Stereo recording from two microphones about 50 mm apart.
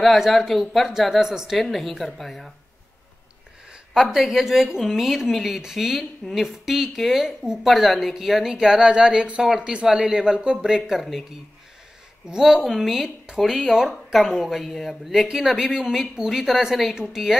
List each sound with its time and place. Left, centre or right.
0.0 s speech: centre
1.6 s speech: centre
3.9 s speech: centre
8.8 s speech: centre
12.3 s a woman's voice: centre
14.6 s a woman's voice: centre